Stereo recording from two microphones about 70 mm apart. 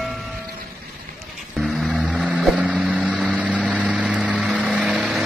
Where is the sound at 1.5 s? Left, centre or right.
Centre.